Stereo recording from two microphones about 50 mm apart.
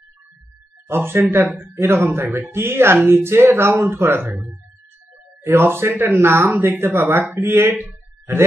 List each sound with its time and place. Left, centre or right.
0.8 s speech: right
1.7 s speech: right
5.4 s speech: right
6.1 s speech: right
7.7 s a sound: right